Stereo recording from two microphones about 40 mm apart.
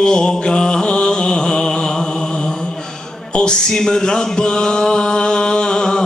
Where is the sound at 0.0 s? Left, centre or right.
Centre.